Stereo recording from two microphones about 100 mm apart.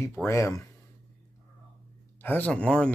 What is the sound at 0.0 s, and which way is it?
Speech, 25° left (ahead or behind).